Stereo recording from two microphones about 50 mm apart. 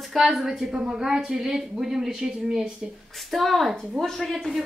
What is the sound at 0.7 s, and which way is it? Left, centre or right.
Speech, right.